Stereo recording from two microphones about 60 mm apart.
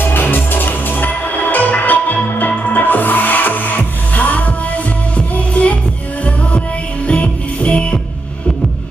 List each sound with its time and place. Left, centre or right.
0.0 s music: left
7.1 s music: left